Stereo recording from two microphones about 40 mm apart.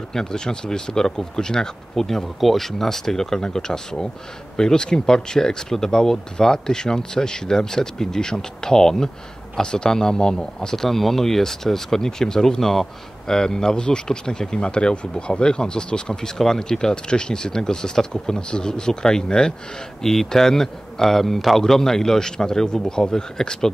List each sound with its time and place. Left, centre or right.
0.1 s speech: centre
20.0 s speech: centre